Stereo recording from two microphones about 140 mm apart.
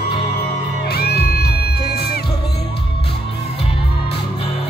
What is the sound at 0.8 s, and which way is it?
Music, 90° left.